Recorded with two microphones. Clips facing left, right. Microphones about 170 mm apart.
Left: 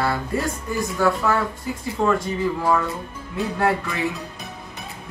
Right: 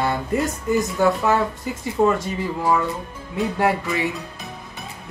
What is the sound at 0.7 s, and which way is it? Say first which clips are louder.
Speech: right 3 dB; 20° right (ahead or behind).